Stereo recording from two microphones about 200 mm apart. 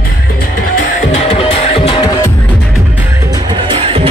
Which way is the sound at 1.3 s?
30° left (ahead or behind).